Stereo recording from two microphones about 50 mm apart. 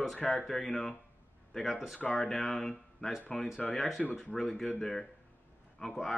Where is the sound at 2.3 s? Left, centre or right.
Centre.